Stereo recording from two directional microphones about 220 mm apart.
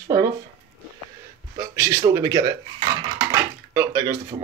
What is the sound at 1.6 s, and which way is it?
Dishes, 10° right (ahead or behind).